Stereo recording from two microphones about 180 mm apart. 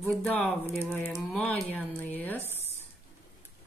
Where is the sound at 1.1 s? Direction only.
5° left (ahead or behind).